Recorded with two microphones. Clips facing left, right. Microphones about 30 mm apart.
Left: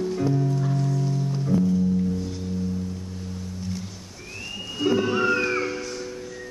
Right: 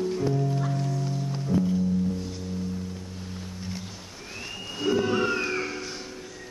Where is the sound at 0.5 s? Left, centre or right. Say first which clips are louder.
Left 3 dB; centre.